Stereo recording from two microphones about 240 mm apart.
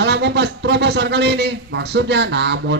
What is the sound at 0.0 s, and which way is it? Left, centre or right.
A man's voice, right.